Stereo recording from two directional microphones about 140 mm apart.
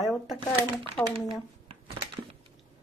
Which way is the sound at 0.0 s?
Centre (ahead or behind).